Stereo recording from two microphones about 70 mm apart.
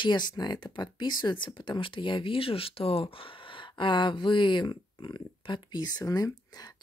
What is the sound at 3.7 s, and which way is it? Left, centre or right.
Speech, left.